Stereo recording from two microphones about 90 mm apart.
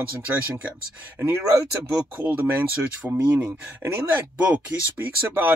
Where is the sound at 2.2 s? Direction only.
20° right (ahead or behind).